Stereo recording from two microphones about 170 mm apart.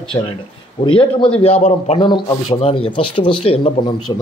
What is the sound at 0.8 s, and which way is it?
A man's voice, 30° left (ahead or behind).